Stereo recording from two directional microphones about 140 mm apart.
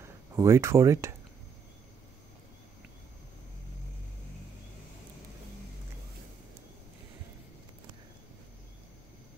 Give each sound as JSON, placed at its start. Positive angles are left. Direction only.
{"t": 0.0, "sound": "speech", "side_deg": -20}